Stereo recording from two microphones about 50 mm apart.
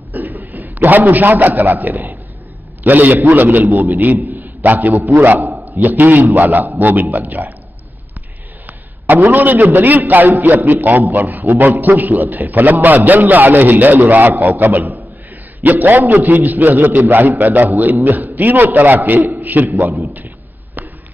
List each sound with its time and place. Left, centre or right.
0.1 s a man's voice: right
9.3 s a man's voice: right